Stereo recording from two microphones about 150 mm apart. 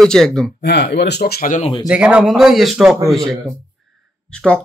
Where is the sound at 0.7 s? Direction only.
90° left.